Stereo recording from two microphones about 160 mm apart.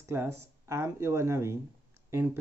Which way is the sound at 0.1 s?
15° right (ahead or behind).